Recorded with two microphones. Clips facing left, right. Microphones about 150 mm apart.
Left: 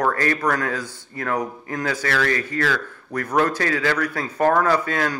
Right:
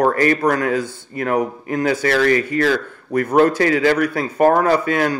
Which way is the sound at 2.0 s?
30° right (ahead or behind).